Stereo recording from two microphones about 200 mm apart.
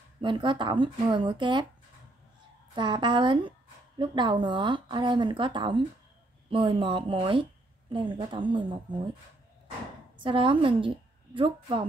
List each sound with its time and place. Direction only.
0.2 s speech: 25° right (ahead or behind)
2.7 s speech: 25° right (ahead or behind)
10.1 s a woman's voice: 25° right (ahead or behind)